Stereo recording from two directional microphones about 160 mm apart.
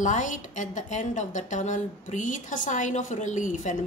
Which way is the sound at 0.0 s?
50° left (ahead or behind).